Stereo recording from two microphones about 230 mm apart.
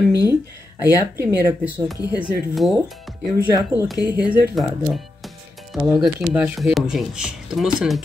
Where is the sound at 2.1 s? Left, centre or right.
Centre.